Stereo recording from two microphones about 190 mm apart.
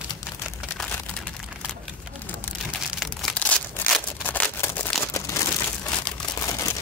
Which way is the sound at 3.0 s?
Centre (ahead or behind).